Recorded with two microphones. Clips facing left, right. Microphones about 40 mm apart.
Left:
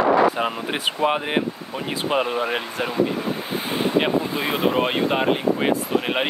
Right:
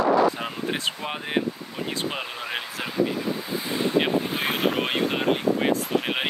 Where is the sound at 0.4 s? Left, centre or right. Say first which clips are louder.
Left 5 dB; left.